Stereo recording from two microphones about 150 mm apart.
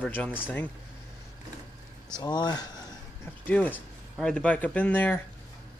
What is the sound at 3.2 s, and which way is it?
Speech, 10° left (ahead or behind).